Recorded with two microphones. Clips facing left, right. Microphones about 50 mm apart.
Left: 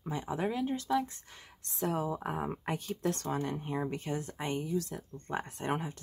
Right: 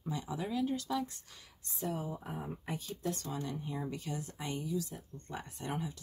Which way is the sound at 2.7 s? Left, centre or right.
Left.